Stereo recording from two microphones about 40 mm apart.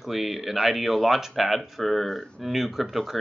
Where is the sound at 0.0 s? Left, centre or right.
Centre.